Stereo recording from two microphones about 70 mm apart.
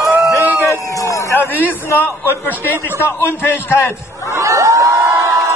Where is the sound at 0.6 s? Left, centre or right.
Left.